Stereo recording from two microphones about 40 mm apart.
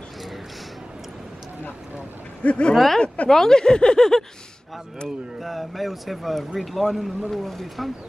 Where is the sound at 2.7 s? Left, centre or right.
Centre.